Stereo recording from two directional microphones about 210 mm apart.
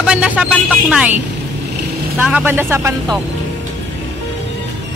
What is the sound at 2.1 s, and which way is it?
Speech, 10° right (ahead or behind).